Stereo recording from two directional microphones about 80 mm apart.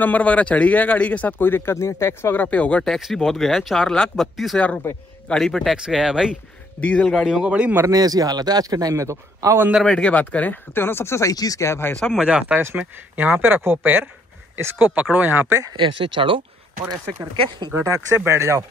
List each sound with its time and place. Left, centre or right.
0.0 s speech: centre; by 2.3 s left
2.3 s speech: centre
5.3 s speech: centre
6.8 s speech: centre
7.2 s a man's voice: centre
7.9 s a man's voice: right
9.8 s speech: centre; by 11.9 s left
12.2 s speech: centre
15.7 s speech: right
17.7 s speech: right